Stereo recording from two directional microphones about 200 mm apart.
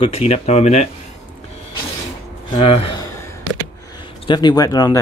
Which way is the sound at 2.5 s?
25° left (ahead or behind).